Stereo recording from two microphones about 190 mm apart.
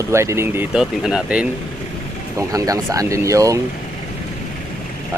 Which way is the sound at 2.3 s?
20° right (ahead or behind).